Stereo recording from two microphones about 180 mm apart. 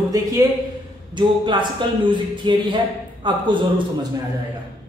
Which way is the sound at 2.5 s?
25° right (ahead or behind).